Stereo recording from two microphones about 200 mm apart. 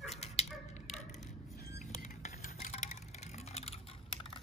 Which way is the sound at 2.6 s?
40° left (ahead or behind).